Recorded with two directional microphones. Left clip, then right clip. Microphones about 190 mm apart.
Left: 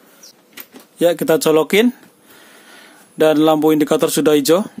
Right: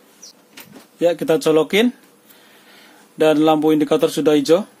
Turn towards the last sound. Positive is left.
turn(degrees=40)  # may be behind; listen again after turning